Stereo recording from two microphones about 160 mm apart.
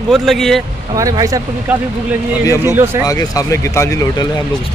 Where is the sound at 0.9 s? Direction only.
20° right (ahead or behind).